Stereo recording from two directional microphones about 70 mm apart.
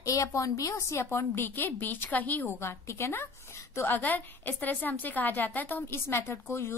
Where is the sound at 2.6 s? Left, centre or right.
Left.